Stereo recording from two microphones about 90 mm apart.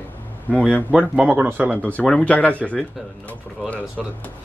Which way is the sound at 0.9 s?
10° right (ahead or behind).